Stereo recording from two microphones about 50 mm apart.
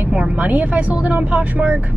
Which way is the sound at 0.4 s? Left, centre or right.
Right.